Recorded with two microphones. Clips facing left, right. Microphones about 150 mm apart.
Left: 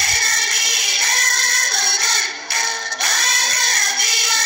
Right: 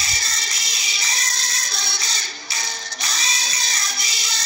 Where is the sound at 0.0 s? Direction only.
55° left (ahead or behind).